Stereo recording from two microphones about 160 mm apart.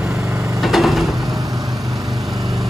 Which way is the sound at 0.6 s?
Centre (ahead or behind).